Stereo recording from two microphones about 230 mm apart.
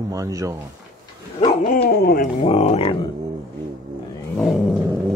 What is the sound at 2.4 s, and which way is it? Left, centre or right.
Speech, left.